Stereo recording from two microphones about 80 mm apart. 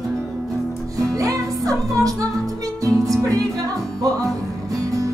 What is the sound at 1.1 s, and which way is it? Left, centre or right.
Music, right.